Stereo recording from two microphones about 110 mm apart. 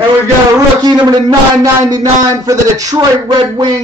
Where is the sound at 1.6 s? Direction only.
35° right (ahead or behind).